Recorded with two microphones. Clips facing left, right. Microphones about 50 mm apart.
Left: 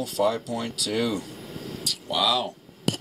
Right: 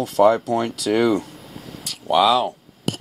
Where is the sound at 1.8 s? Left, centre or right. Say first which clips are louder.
Right 9 dB; right.